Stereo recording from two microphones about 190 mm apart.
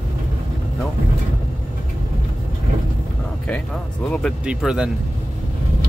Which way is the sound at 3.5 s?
5° left (ahead or behind).